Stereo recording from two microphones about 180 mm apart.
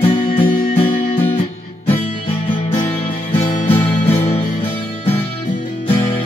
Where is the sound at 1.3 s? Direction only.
30° left (ahead or behind).